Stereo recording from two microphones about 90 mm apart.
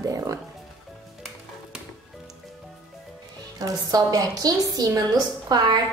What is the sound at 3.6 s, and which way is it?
A woman's voice, 40° right (ahead or behind).